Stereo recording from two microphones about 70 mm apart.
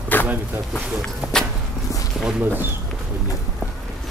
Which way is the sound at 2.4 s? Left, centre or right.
Right.